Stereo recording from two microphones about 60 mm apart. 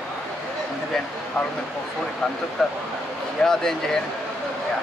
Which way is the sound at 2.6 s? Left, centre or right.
Centre.